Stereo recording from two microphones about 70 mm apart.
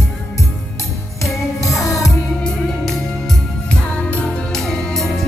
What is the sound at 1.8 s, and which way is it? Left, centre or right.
Music, left.